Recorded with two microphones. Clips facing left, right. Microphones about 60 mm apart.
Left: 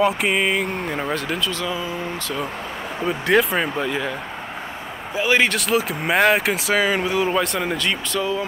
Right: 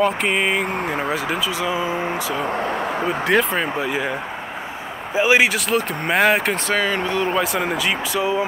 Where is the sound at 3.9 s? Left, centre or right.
Centre.